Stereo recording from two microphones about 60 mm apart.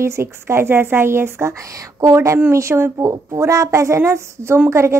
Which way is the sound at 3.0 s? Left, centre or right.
Right.